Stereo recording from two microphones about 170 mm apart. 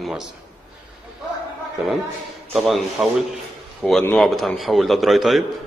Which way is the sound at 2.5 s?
Centre (ahead or behind).